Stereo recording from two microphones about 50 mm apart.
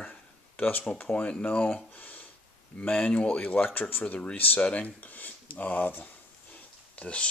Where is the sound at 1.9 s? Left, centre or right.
Left.